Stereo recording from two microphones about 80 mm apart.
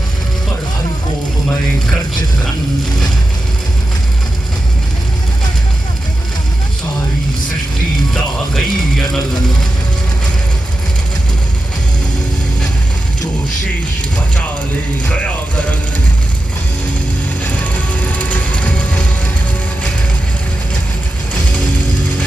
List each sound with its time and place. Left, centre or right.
8.1 s music: centre
15.0 s music: centre
17.4 s music: centre